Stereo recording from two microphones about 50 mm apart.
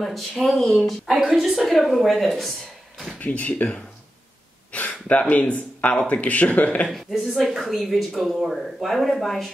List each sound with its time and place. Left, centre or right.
0.0 s speech: centre
3.2 s speech: left
4.7 s gasp: left
5.3 s speech: left
6.9 s speech: centre